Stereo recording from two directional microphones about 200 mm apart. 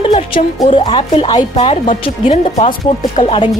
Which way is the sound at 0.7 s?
30° left (ahead or behind).